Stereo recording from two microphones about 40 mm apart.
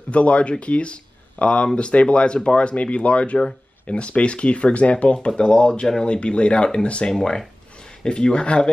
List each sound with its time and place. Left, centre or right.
0.1 s speech: left
7.1 s speech: centre